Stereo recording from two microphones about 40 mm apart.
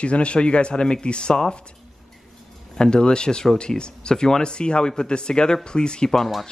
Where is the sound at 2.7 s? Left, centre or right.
Left.